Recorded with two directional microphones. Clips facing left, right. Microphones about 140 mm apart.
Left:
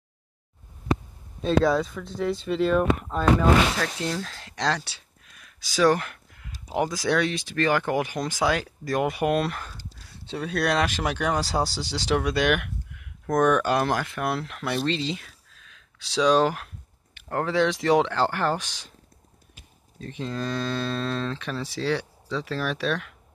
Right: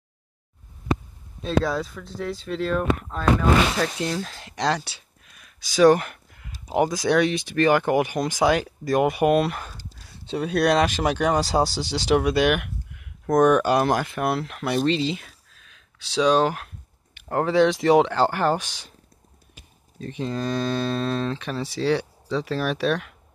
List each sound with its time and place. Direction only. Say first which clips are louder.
1.4 s speech: left 2 dB; centre (ahead or behind)
3.7 s speech: right 3 dB; 20° right (ahead or behind); by 16.6 s centre (ahead or behind)
17.1 s speech: right 4 dB; 20° right (ahead or behind)
20.0 s speech: right 3 dB; 15° right (ahead or behind)